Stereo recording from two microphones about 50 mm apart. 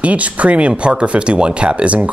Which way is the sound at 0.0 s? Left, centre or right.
Right.